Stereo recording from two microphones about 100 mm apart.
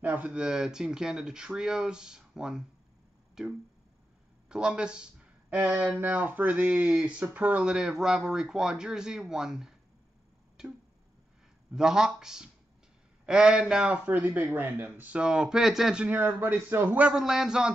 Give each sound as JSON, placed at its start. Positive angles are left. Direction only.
{"t": 0.0, "sound": "speech", "side_deg": -15}
{"t": 3.4, "sound": "a sound", "side_deg": -5}
{"t": 4.5, "sound": "speech", "side_deg": -10}
{"t": 16.2, "sound": "a man's voice", "side_deg": -20}
{"t": 17.1, "sound": "speech", "side_deg": -5}